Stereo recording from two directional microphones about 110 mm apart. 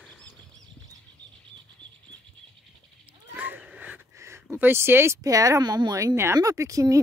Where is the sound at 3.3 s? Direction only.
15° right (ahead or behind).